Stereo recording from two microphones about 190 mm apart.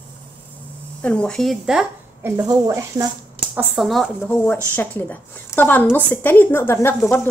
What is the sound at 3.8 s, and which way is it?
A woman's voice, centre (ahead or behind).